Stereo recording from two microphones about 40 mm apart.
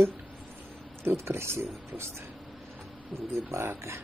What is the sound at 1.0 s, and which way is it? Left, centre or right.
Speech, right.